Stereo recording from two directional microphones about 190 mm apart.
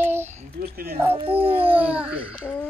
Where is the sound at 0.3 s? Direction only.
45° right (ahead or behind).